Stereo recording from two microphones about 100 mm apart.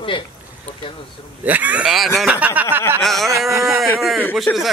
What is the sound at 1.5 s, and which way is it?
A man's voice, 15° right (ahead or behind).